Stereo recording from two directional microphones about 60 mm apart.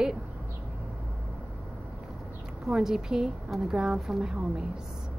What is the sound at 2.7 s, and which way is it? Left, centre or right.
Speech, centre.